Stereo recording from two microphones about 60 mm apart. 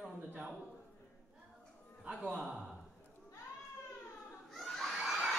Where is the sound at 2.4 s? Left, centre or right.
Centre.